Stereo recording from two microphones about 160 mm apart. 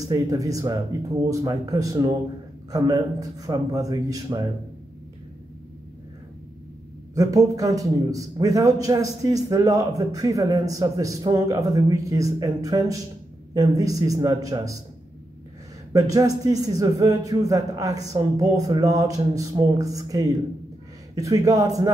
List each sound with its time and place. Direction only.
0.0 s a man's voice: 20° right (ahead or behind)
7.2 s a man's voice: 20° right (ahead or behind)
15.9 s a man's voice: 20° right (ahead or behind)